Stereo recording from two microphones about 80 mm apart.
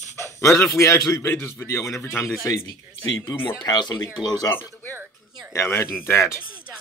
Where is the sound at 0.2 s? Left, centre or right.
Left.